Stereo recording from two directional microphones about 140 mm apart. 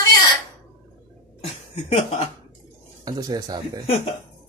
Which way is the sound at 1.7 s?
45° left (ahead or behind).